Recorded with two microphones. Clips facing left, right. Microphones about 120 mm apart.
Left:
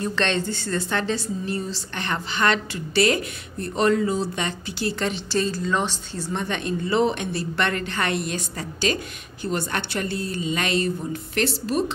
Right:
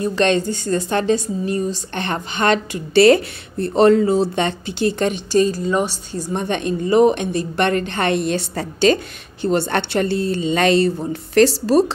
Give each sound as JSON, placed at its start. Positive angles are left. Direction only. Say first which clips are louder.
{"t": 0.0, "sound": "a woman's voice", "louder": "right 7 dB", "side_deg": -15}
{"t": 3.0, "sound": "a woman's voice", "louder": "right 9 dB", "side_deg": -35}
{"t": 8.9, "sound": "a woman's voice", "louder": "right 9 dB", "side_deg": -35}